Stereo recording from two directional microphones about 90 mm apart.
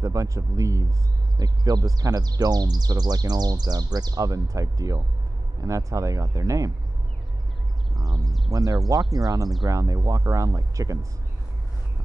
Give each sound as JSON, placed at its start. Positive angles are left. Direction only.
{"t": 0.0, "sound": "speech", "side_deg": -40}
{"t": 7.9, "sound": "speech", "side_deg": 0}
{"t": 8.5, "sound": "speech", "side_deg": -40}